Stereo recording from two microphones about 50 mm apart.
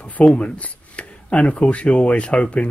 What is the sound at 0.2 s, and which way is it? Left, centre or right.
Speech, centre.